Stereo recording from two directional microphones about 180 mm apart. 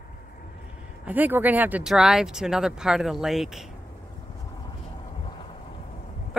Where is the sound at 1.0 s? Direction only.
10° right (ahead or behind).